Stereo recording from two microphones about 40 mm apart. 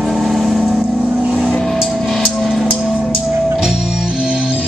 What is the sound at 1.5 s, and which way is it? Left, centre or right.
Music, centre.